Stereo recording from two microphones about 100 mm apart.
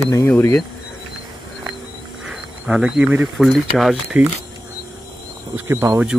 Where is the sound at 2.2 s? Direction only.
5° right (ahead or behind).